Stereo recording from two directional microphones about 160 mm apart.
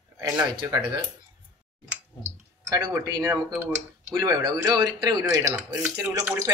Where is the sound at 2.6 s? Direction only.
25° right (ahead or behind).